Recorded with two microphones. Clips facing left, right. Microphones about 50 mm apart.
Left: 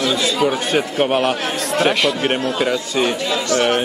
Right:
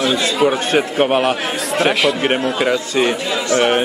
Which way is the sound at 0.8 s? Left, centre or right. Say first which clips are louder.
Right 2 dB; centre.